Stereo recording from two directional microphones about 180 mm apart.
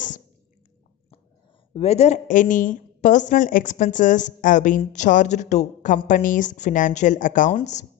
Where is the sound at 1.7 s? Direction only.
35° left (ahead or behind).